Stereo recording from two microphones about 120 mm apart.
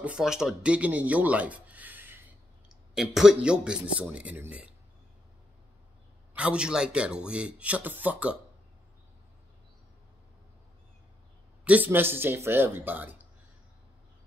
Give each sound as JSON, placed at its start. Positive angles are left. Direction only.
{"t": 0.0, "sound": "speech", "side_deg": -5}
{"t": 2.9, "sound": "speech", "side_deg": 0}
{"t": 6.3, "sound": "speech", "side_deg": -10}
{"t": 11.6, "sound": "speech", "side_deg": -15}